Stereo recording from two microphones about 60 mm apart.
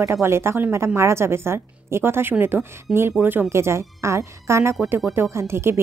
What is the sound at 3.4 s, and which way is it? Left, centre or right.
A woman's voice, right.